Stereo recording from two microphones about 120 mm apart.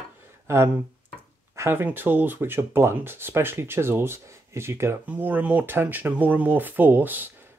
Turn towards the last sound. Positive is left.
turn(degrees=-15)  # may be behind; listen again after turning